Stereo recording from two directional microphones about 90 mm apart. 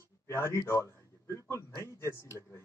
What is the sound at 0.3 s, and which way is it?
Speech, 30° left (ahead or behind).